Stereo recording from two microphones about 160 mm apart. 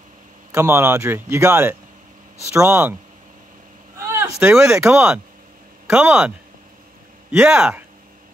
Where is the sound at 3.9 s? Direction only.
20° right (ahead or behind).